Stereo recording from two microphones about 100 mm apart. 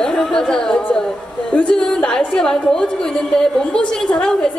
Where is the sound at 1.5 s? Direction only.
10° left (ahead or behind).